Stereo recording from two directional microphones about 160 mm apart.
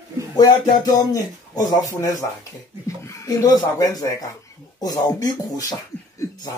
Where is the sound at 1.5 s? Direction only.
20° left (ahead or behind).